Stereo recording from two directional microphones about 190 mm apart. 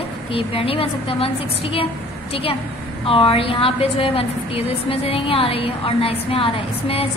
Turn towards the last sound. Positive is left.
turn(degrees=30)  # may be behind; listen again after turning